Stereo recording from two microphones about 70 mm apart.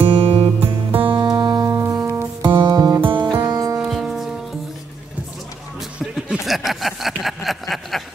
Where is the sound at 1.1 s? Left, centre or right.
Right.